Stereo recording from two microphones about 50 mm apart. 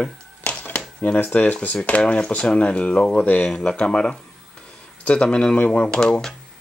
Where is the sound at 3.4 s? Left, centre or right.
Centre.